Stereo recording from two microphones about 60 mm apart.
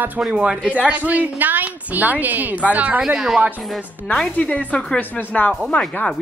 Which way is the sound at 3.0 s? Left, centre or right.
Centre.